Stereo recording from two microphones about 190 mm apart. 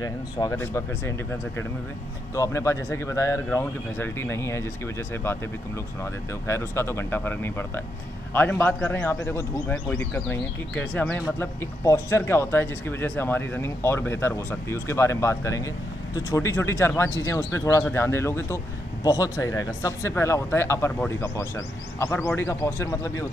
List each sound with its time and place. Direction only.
0.0 s speech: 15° left (ahead or behind)
2.3 s speech: 15° left (ahead or behind)
6.4 s speech: 15° left (ahead or behind)